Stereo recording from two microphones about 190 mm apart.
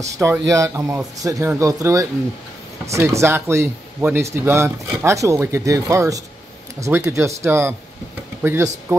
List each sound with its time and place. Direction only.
0.0 s speech: 15° right (ahead or behind)